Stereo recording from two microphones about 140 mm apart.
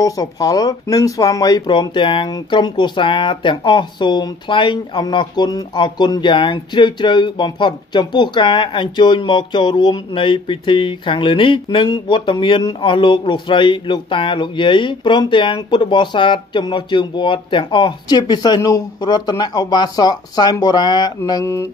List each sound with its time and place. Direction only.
0.0 s speech: 25° left (ahead or behind)
21.3 s music: 25° left (ahead or behind)